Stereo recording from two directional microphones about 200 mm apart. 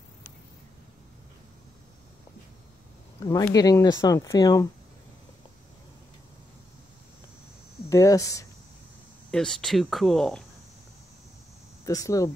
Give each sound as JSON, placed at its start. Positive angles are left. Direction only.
{"t": 3.3, "sound": "speech", "side_deg": 15}
{"t": 7.9, "sound": "speech", "side_deg": 15}
{"t": 9.3, "sound": "speech", "side_deg": 5}
{"t": 11.8, "sound": "speech", "side_deg": 15}